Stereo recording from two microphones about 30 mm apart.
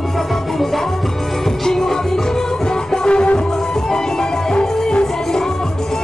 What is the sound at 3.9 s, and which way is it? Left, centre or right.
Music, left.